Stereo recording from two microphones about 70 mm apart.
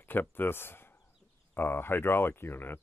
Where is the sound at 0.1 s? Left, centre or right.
Left.